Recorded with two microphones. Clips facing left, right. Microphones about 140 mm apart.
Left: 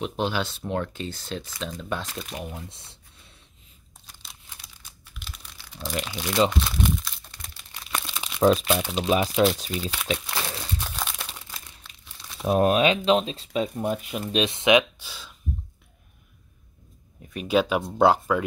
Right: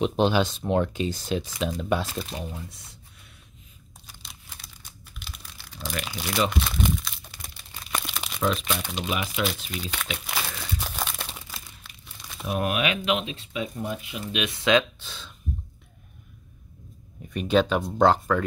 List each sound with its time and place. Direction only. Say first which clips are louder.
0.0 s speech: right 5 dB; 20° right (ahead or behind)
2.3 s speech: even; 10° left (ahead or behind)
2.7 s speech: right 1 dB; 30° left (ahead or behind)
4.1 s tearing: even; centre (ahead or behind)
5.2 s computer keyboard: even; centre (ahead or behind)
6.0 s speech: left 2 dB; 5° right (ahead or behind)
6.6 s crumpling: even; centre (ahead or behind)
8.4 s speech: left 7 dB; 40° left (ahead or behind)
9.7 s speech: left 5 dB; 5° left (ahead or behind)
10.8 s crumpling: right 1 dB; centre (ahead or behind)
12.4 s speech: left 6 dB; 35° left (ahead or behind)
14.3 s speech: left 2 dB; 25° left (ahead or behind); by 15.3 s 10° left (ahead or behind)
17.3 s speech: right 1 dB; 5° left (ahead or behind)